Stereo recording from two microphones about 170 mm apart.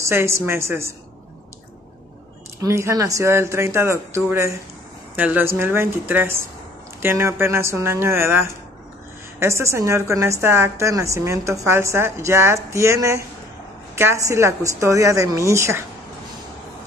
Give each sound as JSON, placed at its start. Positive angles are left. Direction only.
{"t": 0.0, "sound": "a woman's voice", "side_deg": -15}
{"t": 2.6, "sound": "a woman's voice", "side_deg": -15}